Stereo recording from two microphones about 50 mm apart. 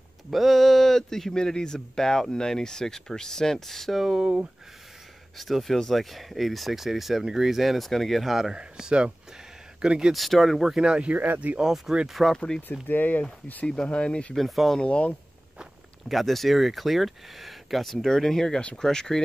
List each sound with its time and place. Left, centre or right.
0.3 s speech: centre
5.4 s speech: centre
8.5 s speech: centre
10.1 s speech: centre
10.8 s speech: right
11.6 s speech: centre
12.4 s speech: centre
12.8 s speech: left
13.8 s speech: left
14.3 s speech: centre
14.8 s speech: left
16.1 s speech: centre